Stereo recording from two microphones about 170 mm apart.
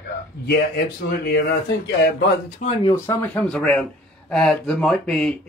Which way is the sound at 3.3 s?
5° left (ahead or behind).